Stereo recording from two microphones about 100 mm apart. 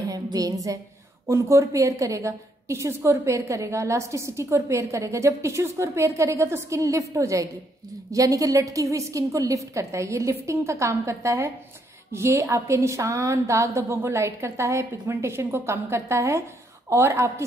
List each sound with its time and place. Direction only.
0.1 s music: 35° right (ahead or behind)
1.2 s a woman's voice: 30° right (ahead or behind)